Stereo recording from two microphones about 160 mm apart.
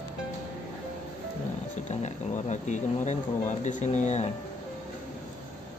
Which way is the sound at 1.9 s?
45° left (ahead or behind).